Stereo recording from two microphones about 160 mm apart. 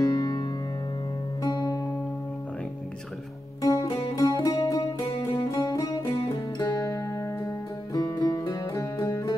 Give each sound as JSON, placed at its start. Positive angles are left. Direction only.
{"t": 0.0, "sound": "music", "side_deg": 25}
{"t": 3.6, "sound": "music", "side_deg": 20}